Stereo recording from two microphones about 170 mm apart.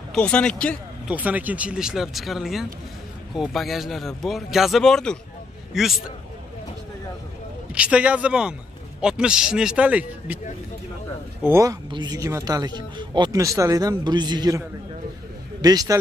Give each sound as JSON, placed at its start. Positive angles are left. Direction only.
{"t": 0.1, "sound": "speech", "side_deg": 5}
{"t": 1.0, "sound": "speech", "side_deg": -10}
{"t": 7.7, "sound": "a man's voice", "side_deg": -5}
{"t": 11.4, "sound": "speech", "side_deg": -15}
{"t": 15.6, "sound": "speech", "side_deg": -20}